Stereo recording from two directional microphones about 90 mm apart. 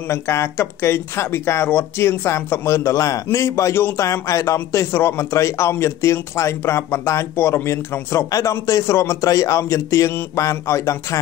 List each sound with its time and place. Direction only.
0.1 s speech: 30° left (ahead or behind)